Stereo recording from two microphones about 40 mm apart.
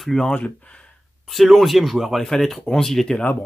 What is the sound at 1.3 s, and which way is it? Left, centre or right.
Speech, centre.